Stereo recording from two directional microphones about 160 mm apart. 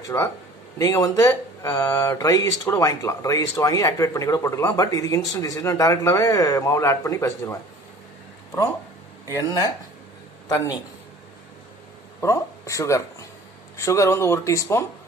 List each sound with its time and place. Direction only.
0.1 s speech: 15° left (ahead or behind)
9.3 s speech: 20° left (ahead or behind)
12.2 s speech: 20° left (ahead or behind)